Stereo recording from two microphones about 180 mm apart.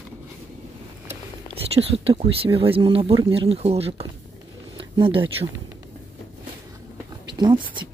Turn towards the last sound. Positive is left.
turn(degrees=-25)  # may be behind; listen again after turning